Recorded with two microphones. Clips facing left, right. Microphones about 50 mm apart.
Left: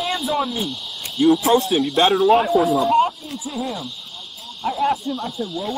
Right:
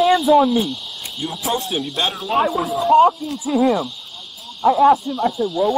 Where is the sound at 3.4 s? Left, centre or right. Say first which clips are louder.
Right 11 dB; right.